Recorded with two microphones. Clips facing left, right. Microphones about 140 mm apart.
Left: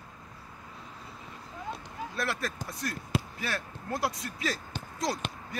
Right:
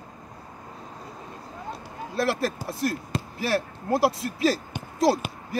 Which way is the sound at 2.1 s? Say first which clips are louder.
Right 9 dB; 30° right (ahead or behind).